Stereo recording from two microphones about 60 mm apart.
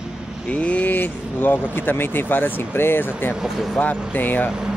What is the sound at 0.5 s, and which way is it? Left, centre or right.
Speech, left.